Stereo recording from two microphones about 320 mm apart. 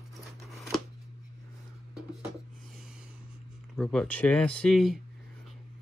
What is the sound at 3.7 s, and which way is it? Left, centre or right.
Speech, centre.